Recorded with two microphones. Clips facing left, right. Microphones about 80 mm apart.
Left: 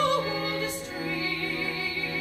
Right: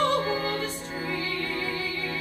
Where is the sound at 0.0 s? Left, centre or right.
Right.